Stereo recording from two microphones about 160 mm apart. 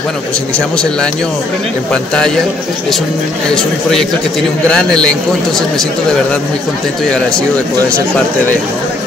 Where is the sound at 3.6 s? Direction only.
5° left (ahead or behind).